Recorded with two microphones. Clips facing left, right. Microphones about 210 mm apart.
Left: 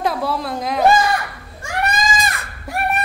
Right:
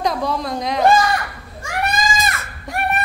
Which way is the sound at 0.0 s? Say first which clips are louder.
Even; 5° left (ahead or behind).